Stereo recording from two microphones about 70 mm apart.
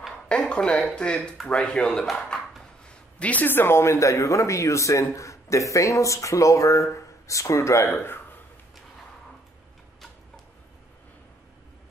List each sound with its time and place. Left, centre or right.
0.3 s a man's voice: centre; by 8.0 s left